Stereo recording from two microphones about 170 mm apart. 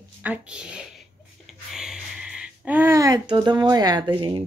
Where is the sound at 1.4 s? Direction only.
5° right (ahead or behind); by 4.1 s 25° right (ahead or behind).